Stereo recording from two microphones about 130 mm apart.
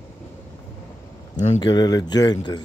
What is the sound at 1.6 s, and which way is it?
Speech, 30° left (ahead or behind).